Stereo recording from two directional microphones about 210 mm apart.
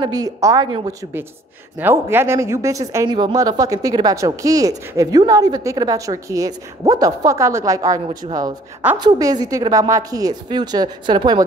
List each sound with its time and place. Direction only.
0.0 s speech: 20° right (ahead or behind)
1.8 s speech: 10° right (ahead or behind)